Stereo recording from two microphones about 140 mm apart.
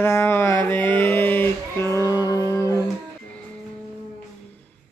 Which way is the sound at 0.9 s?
15° left (ahead or behind).